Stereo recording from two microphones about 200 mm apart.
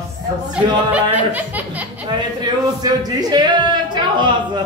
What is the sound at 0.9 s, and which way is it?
Chuckle, 10° right (ahead or behind).